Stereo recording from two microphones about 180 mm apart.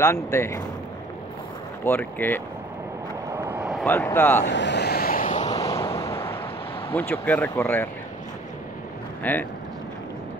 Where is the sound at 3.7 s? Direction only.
5° left (ahead or behind).